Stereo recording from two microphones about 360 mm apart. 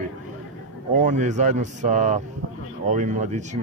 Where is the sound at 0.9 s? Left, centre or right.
Centre.